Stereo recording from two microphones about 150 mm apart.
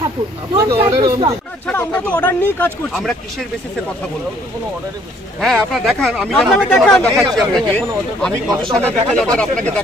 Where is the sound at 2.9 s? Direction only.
Centre (ahead or behind).